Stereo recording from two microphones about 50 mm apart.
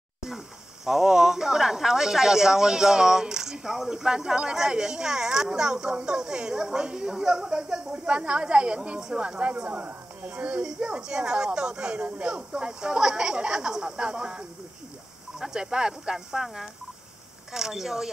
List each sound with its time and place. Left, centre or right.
0.8 s a woman's voice: centre